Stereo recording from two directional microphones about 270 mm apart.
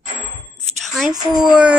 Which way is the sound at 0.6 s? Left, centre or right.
Centre.